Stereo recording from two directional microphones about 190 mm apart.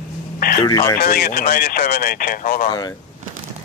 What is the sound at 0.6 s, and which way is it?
Speech, 20° left (ahead or behind).